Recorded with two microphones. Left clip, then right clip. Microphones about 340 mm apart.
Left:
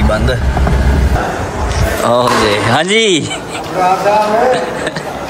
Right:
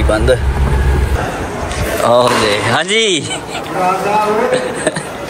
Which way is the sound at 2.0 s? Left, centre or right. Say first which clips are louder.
Even; centre.